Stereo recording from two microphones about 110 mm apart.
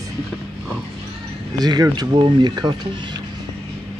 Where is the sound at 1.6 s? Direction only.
35° right (ahead or behind).